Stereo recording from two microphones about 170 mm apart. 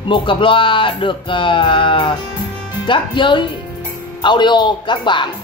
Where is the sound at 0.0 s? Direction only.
30° left (ahead or behind).